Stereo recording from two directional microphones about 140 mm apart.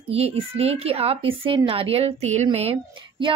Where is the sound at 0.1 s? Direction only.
45° right (ahead or behind).